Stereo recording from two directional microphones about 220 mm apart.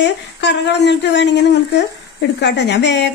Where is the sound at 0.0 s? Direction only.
50° left (ahead or behind).